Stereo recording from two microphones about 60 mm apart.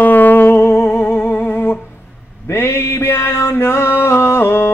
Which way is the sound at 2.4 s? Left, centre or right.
Left.